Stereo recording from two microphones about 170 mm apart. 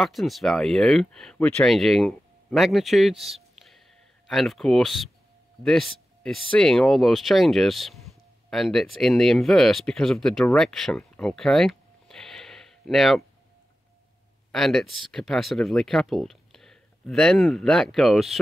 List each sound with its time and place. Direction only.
0.0 s speech: centre (ahead or behind)
14.5 s speech: centre (ahead or behind)